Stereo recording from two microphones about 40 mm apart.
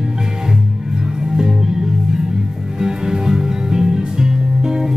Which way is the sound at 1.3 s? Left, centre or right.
Centre.